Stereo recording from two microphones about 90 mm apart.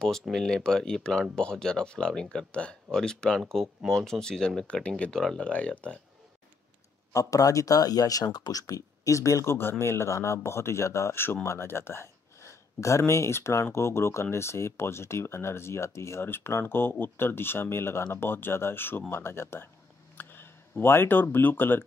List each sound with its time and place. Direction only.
0.3 s speech: 5° left (ahead or behind)
7.1 s speech: 40° left (ahead or behind); by 21.8 s 20° left (ahead or behind)